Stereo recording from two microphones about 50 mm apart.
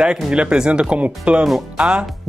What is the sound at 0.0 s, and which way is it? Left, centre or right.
Speech, centre.